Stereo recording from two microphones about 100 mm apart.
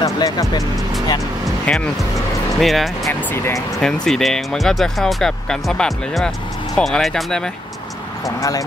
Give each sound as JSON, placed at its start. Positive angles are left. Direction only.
{"t": 0.0, "sound": "speech", "side_deg": 40}
{"t": 1.7, "sound": "speech", "side_deg": 10}
{"t": 2.6, "sound": "speech", "side_deg": 0}
{"t": 3.1, "sound": "speech", "side_deg": 20}
{"t": 3.8, "sound": "speech", "side_deg": 5}
{"t": 8.4, "sound": "speech", "side_deg": 35}